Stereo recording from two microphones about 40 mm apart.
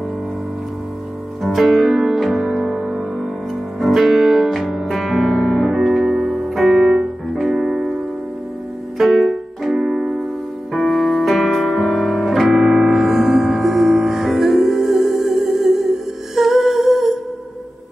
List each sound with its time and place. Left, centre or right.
1.4 s music: centre
16.3 s humming: centre